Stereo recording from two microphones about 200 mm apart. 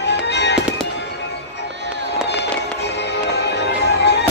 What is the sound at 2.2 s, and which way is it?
Music, 55° left (ahead or behind).